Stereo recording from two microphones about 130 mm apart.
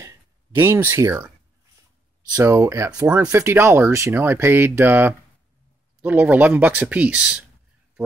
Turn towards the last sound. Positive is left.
turn(degrees=-5)  # may be behind; listen again after turning